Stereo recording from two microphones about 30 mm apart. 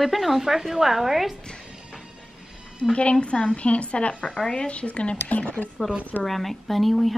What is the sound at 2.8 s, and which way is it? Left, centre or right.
A woman's voice, left.